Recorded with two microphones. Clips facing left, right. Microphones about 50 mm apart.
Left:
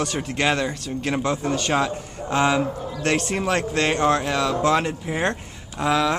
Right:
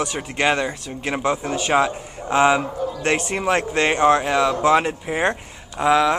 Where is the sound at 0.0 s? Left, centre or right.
Centre.